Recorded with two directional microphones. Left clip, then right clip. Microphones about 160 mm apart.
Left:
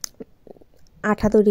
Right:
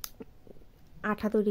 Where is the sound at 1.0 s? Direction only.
40° left (ahead or behind).